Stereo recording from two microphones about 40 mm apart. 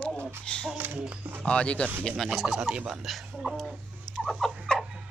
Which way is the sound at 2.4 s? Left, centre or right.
Centre.